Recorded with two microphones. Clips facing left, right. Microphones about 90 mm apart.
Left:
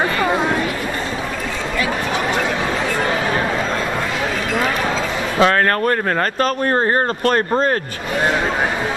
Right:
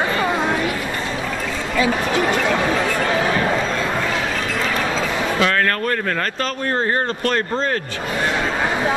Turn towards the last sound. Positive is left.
turn(degrees=35)  # may be behind; listen again after turning